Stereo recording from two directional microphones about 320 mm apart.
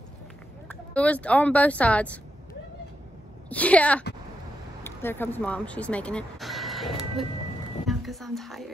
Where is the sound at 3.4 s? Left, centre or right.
Centre.